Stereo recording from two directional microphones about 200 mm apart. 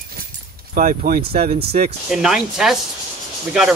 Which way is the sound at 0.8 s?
45° right (ahead or behind).